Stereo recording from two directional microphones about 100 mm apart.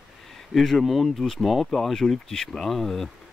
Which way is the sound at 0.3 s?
5° left (ahead or behind).